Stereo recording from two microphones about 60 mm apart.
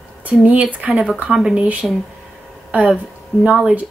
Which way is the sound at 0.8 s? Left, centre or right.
Right.